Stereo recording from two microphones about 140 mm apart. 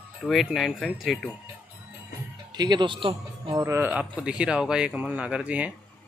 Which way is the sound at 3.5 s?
20° right (ahead or behind).